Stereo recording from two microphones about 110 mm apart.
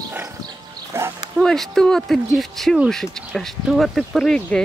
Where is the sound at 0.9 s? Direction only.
20° right (ahead or behind).